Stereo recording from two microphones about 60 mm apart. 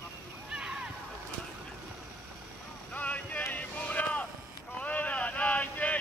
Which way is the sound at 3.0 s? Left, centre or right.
Left.